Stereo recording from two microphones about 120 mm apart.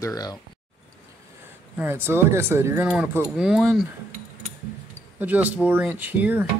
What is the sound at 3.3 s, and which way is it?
Speech, 5° right (ahead or behind).